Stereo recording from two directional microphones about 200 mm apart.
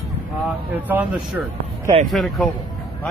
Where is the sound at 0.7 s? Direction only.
10° right (ahead or behind).